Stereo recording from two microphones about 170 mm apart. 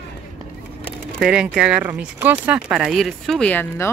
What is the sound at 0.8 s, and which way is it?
Speech, 5° right (ahead or behind).